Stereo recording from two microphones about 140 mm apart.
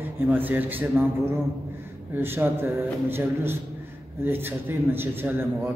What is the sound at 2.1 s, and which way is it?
A man's voice, 15° right (ahead or behind).